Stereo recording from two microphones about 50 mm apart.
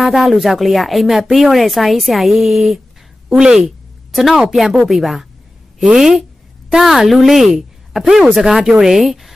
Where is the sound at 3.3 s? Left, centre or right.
Centre.